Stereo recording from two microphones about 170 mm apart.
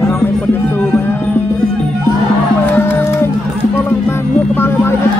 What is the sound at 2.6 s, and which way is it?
Music, 10° left (ahead or behind).